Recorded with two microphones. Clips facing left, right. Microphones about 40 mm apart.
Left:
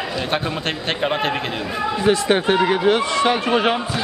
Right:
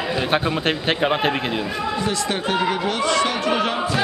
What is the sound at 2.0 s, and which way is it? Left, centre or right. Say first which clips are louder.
Speech: left 6 dB; left.